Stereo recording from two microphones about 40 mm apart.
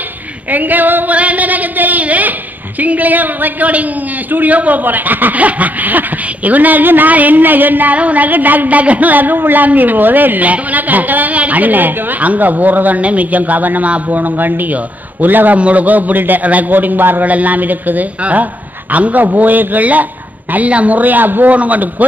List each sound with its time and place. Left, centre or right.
0.5 s female singing: right
1.1 s a sound: right
2.8 s speech: right
17.3 s a man's voice: right